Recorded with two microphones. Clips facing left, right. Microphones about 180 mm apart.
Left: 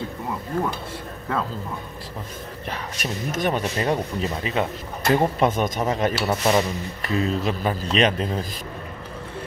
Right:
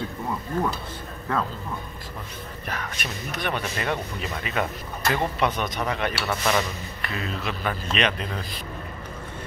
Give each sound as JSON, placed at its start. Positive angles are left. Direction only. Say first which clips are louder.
{"t": 2.7, "sound": "speech", "louder": "left 2 dB", "side_deg": 30}
{"t": 3.3, "sound": "speech", "louder": "left 5 dB", "side_deg": 40}
{"t": 3.6, "sound": "speech", "louder": "left 5 dB", "side_deg": 30}
{"t": 6.2, "sound": "speech", "louder": "left 4 dB", "side_deg": 25}
{"t": 7.1, "sound": "speech", "louder": "left 8 dB", "side_deg": 35}